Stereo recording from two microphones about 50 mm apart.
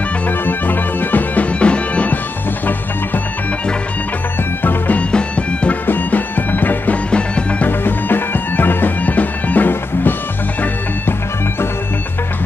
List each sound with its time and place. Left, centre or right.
0.5 s music: left
4.6 s music: left
5.1 s music: left
5.9 s music: left
7.1 s music: left
7.6 s music: left